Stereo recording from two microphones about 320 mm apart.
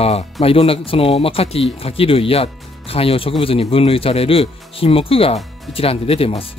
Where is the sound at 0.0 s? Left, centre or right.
Centre.